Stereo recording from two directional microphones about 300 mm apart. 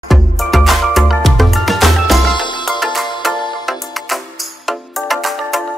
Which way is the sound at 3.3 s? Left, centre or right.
Centre.